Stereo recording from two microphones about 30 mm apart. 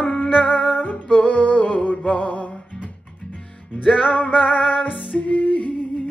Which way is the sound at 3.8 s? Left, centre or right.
Left.